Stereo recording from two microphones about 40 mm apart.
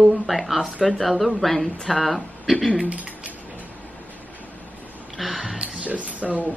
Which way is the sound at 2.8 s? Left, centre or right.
Right.